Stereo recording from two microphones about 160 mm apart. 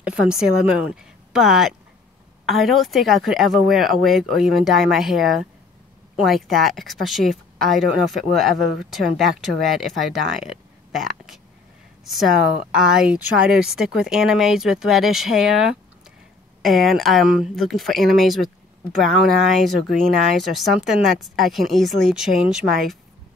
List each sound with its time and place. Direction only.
0.0 s speech: 5° right (ahead or behind)
12.7 s speech: 5° right (ahead or behind)
20.5 s speech: centre (ahead or behind)